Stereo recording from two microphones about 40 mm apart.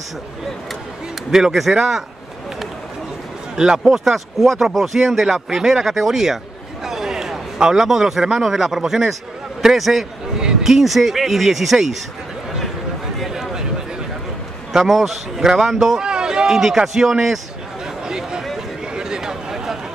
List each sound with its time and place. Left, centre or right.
1.3 s speech: centre
3.5 s speech: centre
13.3 s a sound: centre
14.7 s speech: centre
16.0 s speech: centre
18.0 s a sound: centre